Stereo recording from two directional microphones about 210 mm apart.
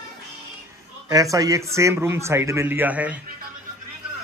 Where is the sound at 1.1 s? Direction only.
15° right (ahead or behind).